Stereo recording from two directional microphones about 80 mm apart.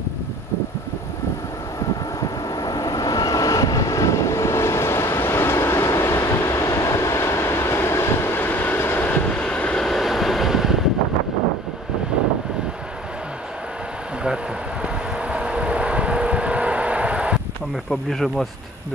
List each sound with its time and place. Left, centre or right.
2.6 s vehicle: left
9.2 s vehicle: centre
9.8 s vehicle: centre
15.1 s vehicle: centre